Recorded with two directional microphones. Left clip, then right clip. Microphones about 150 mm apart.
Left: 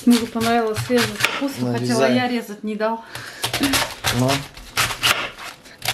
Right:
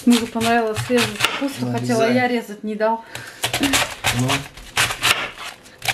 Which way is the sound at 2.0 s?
10° right (ahead or behind).